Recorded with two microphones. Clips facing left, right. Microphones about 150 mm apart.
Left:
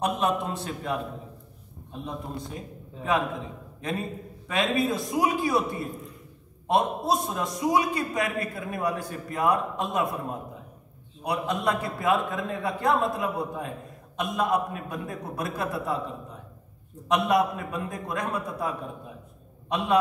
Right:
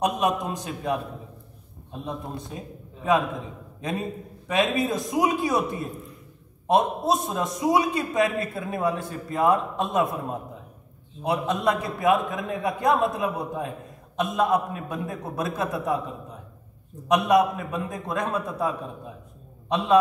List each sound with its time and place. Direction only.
0.0 s a man's voice: 15° right (ahead or behind)
11.2 s a man's voice: 20° right (ahead or behind)
17.1 s a man's voice: 20° right (ahead or behind)